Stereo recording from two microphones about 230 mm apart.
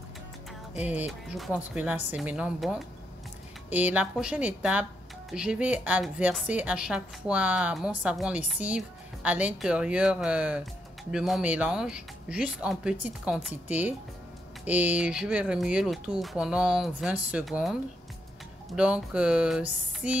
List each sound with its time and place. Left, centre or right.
0.8 s a woman's voice: centre